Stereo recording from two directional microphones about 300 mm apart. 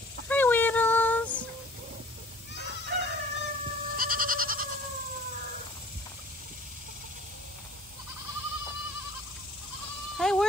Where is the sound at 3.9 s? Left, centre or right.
Right.